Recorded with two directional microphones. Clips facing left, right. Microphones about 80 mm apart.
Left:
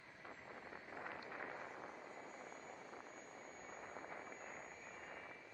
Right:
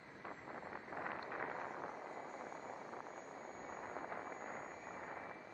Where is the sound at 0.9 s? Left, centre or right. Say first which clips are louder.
Right 6 dB; right.